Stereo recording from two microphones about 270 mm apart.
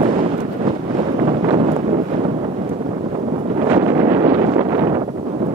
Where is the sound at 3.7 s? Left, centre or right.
Centre.